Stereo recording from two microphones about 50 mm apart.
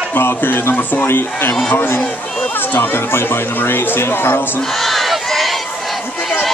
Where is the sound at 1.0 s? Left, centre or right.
Left.